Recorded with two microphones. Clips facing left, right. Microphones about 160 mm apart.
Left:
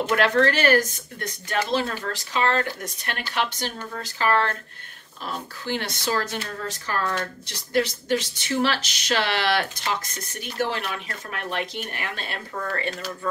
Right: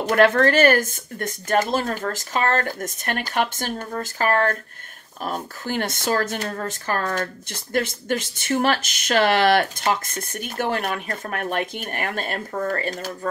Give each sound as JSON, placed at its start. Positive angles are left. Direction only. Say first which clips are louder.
{"t": 0.0, "sound": "speech", "louder": "right 3 dB", "side_deg": -50}